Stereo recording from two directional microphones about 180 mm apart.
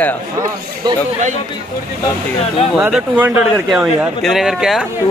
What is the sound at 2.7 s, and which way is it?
Speech, 10° right (ahead or behind).